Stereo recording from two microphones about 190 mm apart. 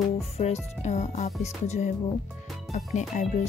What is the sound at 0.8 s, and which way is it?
Speech, 35° left (ahead or behind).